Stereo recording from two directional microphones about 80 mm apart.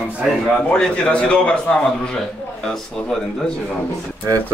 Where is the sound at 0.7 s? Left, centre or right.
Centre.